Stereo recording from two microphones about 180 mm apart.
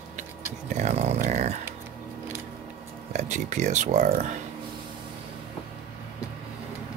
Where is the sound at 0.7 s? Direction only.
40° right (ahead or behind).